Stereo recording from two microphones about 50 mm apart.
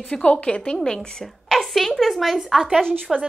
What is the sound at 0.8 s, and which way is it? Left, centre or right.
A woman's voice, centre.